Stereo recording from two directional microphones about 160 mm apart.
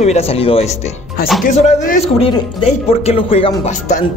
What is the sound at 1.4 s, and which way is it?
Speech, 50° left (ahead or behind).